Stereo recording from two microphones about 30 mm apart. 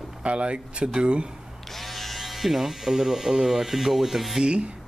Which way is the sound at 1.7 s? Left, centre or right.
Centre.